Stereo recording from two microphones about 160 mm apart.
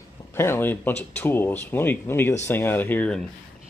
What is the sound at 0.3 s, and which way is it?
Speech, 15° left (ahead or behind).